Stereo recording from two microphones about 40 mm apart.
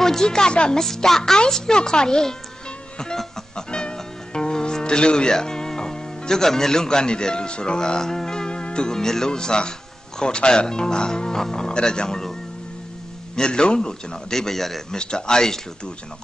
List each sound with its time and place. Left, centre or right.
0.0 s a man's voice: centre
0.7 s a man's voice: centre
3.5 s speech: left
13.4 s a man's voice: left; by 15.0 s centre
15.0 s a man's voice: centre